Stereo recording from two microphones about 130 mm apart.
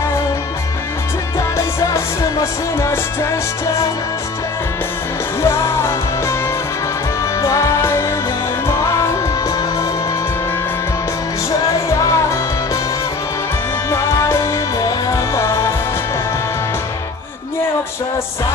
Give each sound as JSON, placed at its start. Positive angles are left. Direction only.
{"t": 2.8, "sound": "music", "side_deg": 20}
{"t": 5.4, "sound": "music", "side_deg": 20}
{"t": 7.4, "sound": "music", "side_deg": 25}
{"t": 12.0, "sound": "music", "side_deg": 25}
{"t": 13.8, "sound": "music", "side_deg": 20}